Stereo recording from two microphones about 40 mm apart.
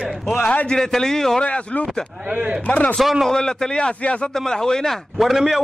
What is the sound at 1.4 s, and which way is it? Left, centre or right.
Speech, left.